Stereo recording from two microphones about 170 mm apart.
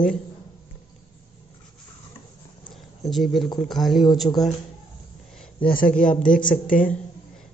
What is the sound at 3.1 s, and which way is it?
Speech, centre (ahead or behind).